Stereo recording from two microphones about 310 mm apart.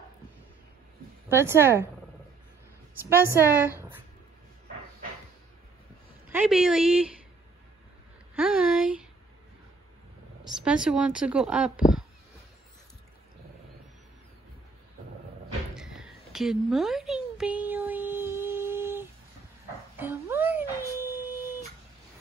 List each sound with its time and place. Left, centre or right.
1.3 s a woman's voice: centre
3.0 s a woman's voice: centre
6.2 s a woman's voice: centre
8.4 s a sound: centre
10.6 s a woman's voice: centre
15.7 s a sound: centre